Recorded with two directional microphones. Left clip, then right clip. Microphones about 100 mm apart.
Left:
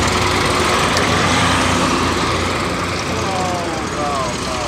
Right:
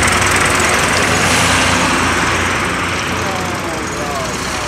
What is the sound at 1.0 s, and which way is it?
Vehicle, 35° right (ahead or behind).